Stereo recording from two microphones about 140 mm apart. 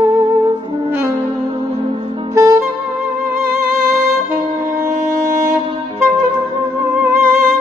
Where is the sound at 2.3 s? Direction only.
25° right (ahead or behind).